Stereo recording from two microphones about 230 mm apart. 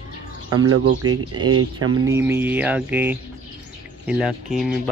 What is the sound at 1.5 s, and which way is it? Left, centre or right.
Speech, right.